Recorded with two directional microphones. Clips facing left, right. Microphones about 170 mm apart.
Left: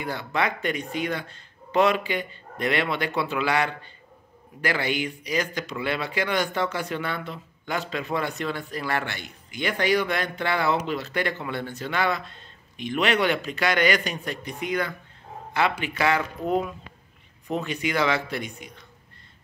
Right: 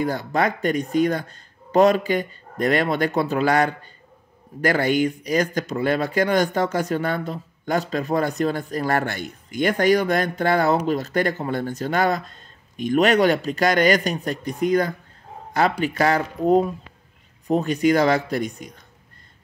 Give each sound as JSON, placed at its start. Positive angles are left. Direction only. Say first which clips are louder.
{"t": 0.0, "sound": "speech", "louder": "right 5 dB", "side_deg": -40}